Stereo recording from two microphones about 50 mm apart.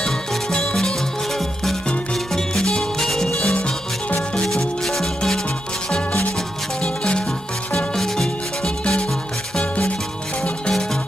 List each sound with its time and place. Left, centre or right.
0.0 s music: centre
2.3 s music: centre
4.8 s music: centre
6.8 s music: centre
7.7 s music: centre
9.6 s music: left